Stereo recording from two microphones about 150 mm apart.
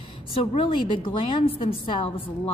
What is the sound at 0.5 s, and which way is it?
A woman's voice, 35° left (ahead or behind).